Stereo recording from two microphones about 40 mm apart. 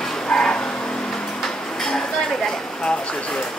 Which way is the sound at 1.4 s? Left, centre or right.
Centre.